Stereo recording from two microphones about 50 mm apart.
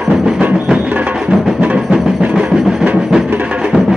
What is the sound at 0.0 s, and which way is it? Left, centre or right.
Music, centre.